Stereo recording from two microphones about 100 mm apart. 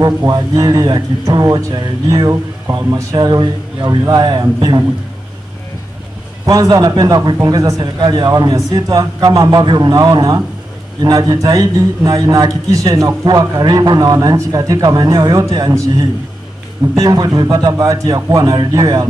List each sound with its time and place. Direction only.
0.3 s a man's voice: 40° right (ahead or behind)
6.4 s a man's voice: 35° right (ahead or behind)
8.3 s a man's voice: 35° right (ahead or behind)
16.9 s a man's voice: 35° right (ahead or behind)